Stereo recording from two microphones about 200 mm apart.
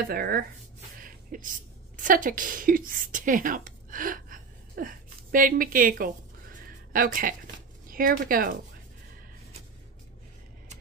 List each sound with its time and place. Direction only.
0.1 s speech: 50° right (ahead or behind)
1.0 s a sound: 45° right (ahead or behind)
2.0 s a woman's voice: 40° right (ahead or behind)